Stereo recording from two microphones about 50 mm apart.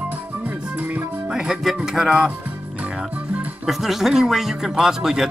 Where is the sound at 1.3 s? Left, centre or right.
Centre.